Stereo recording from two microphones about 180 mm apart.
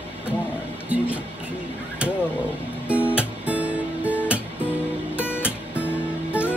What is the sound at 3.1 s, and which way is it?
Music, 5° right (ahead or behind).